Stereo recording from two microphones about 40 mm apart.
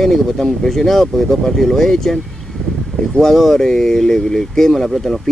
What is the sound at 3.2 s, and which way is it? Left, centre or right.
Speech, centre.